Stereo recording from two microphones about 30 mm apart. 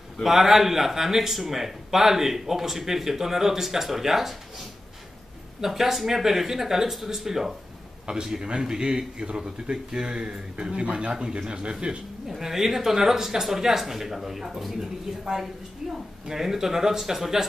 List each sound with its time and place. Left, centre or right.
0.2 s a man's voice: centre
8.1 s a man's voice: right
9.4 s a man's voice: centre
10.0 s speech: right
10.8 s speech: right
11.1 s a man's voice: right
12.3 s a man's voice: centre
16.3 s a man's voice: centre